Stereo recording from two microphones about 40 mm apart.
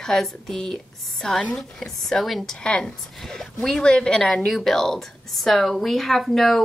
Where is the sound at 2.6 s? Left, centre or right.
Left.